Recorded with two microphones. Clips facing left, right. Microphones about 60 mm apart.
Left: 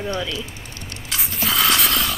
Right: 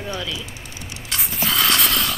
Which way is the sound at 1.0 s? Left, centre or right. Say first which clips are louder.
Even; centre.